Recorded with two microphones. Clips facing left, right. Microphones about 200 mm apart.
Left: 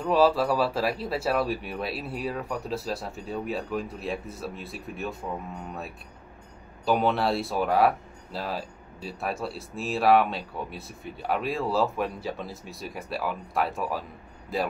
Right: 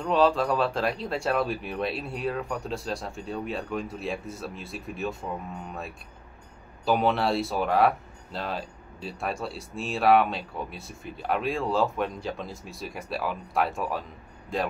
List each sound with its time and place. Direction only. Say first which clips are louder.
0.0 s speech: left 1 dB; 5° left (ahead or behind)
6.8 s speech: even; centre (ahead or behind)